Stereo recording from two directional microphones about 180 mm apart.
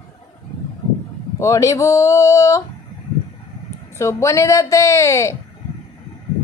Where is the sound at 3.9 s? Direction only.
15° left (ahead or behind).